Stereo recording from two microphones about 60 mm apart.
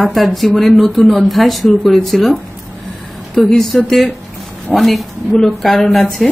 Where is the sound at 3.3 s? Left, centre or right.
Centre.